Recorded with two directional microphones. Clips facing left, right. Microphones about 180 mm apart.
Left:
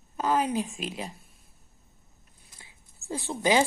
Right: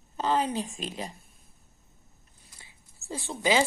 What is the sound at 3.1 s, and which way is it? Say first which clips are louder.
Speech: left 2 dB; 20° left (ahead or behind).